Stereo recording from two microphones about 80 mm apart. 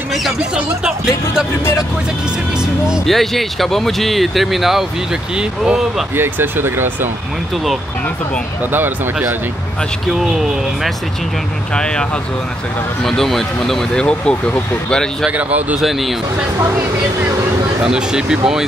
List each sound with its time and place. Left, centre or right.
0.6 s speech: centre
3.1 s speech: centre
6.1 s speech: right
8.7 s speech: right
10.1 s speech: centre
11.7 s speech: centre
15.2 s speech: centre
15.8 s speech: centre
17.8 s speech: centre